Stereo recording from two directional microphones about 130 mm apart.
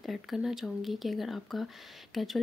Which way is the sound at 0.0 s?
Centre (ahead or behind).